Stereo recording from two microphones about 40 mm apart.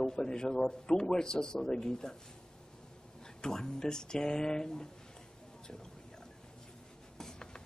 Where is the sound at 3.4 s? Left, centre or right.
Centre.